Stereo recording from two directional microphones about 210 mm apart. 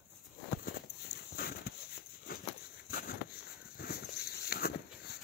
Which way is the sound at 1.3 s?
45° left (ahead or behind).